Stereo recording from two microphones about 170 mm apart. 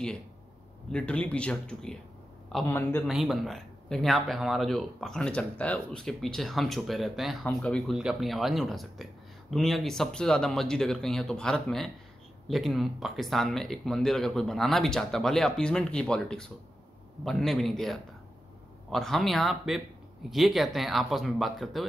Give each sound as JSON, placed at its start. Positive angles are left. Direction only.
{"t": 0.9, "sound": "speech", "side_deg": 5}
{"t": 2.6, "sound": "speech", "side_deg": 15}
{"t": 3.1, "sound": "speech", "side_deg": 0}